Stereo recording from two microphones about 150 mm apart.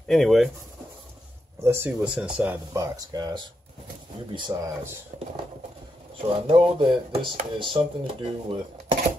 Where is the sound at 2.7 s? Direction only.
25° right (ahead or behind).